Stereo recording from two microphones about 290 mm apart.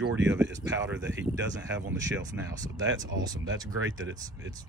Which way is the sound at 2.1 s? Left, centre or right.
Centre.